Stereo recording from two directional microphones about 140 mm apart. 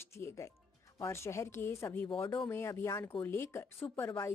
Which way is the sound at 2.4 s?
15° left (ahead or behind).